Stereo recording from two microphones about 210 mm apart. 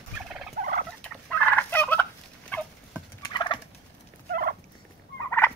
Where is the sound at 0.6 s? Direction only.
40° right (ahead or behind).